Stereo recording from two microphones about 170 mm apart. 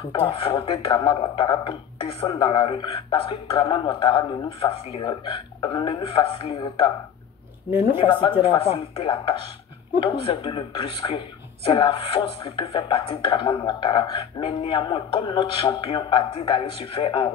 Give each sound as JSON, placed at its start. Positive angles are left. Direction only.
{"t": 0.1, "sound": "speech", "side_deg": 30}
{"t": 8.0, "sound": "speech", "side_deg": 25}